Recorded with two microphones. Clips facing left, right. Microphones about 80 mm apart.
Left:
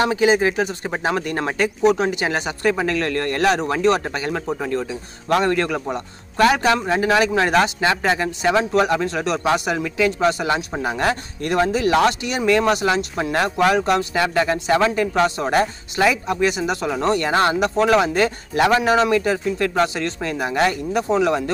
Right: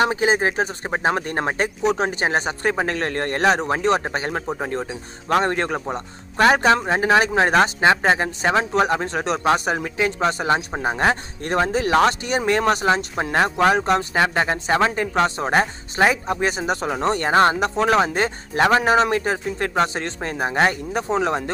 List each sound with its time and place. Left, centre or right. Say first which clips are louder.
0.1 s a man's voice: left 3 dB; right